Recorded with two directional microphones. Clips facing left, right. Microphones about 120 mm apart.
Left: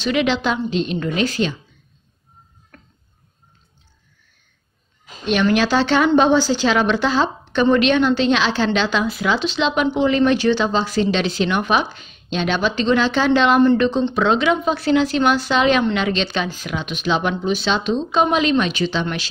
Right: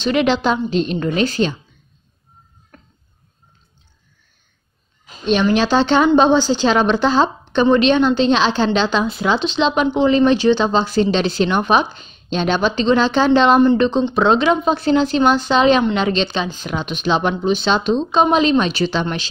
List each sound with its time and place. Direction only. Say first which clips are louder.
0.1 s a woman's voice: right 3 dB; 40° right (ahead or behind)
5.2 s a woman's voice: right 2 dB; 25° right (ahead or behind)
13.7 s a woman's voice: right 2 dB; 20° right (ahead or behind)
14.1 s a woman's voice: right 3 dB; 30° right (ahead or behind)